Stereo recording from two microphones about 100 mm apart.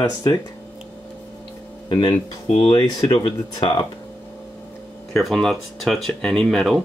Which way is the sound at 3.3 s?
65° left (ahead or behind).